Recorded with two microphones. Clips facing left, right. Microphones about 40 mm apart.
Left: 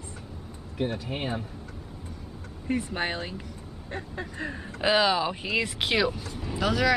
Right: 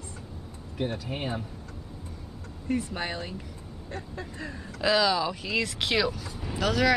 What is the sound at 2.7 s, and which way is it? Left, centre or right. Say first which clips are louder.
Speech: left 2 dB; left.